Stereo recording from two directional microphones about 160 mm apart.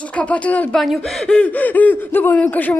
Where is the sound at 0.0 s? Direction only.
10° left (ahead or behind).